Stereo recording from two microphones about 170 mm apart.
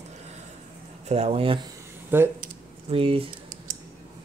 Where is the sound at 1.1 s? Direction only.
35° right (ahead or behind).